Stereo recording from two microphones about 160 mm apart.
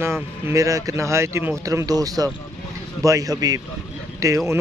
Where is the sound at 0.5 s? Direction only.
20° right (ahead or behind).